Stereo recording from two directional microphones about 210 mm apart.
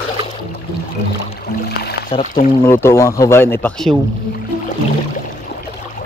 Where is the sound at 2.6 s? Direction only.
10° left (ahead or behind).